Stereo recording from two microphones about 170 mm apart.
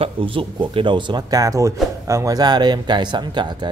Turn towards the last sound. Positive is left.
turn(degrees=-25)  # may be behind; listen again after turning